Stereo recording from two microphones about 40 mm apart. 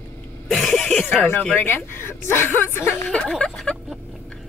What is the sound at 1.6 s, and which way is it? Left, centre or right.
Speech, left.